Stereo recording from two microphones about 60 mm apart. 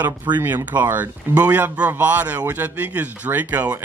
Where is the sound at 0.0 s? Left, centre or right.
Right.